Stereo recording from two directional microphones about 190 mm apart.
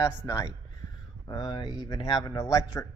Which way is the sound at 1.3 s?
20° left (ahead or behind).